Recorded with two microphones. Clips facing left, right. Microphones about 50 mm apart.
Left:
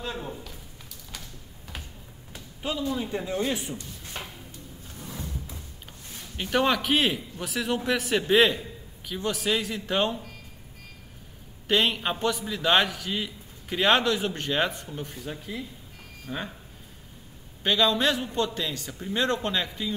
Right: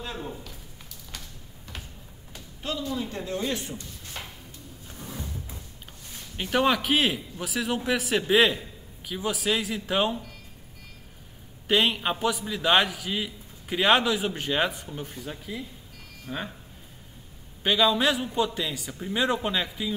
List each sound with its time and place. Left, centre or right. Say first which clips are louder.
0.0 s a sound: left 1 dB; centre
2.3 s speech: left 1 dB; centre
4.0 s a sound: left 1 dB; centre
4.9 s drawer open or close: even; centre
6.3 s a man's voice: right 1 dB; centre
11.6 s a man's voice: right 1 dB; centre
17.6 s a man's voice: right 1 dB; centre